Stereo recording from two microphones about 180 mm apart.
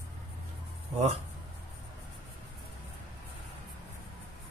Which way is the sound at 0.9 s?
40° right (ahead or behind).